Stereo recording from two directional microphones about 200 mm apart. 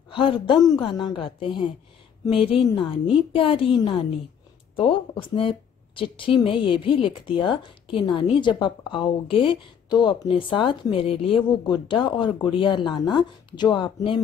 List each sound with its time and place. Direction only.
0.1 s speech: 25° left (ahead or behind)
2.7 s speech: 25° left (ahead or behind)